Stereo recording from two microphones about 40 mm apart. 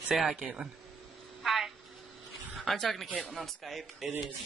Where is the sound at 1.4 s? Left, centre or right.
Centre.